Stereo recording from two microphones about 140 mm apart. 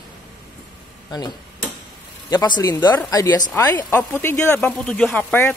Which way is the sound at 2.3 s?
30° left (ahead or behind).